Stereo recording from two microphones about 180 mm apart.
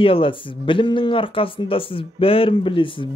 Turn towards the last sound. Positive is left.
turn(degrees=30)  # may be behind; listen again after turning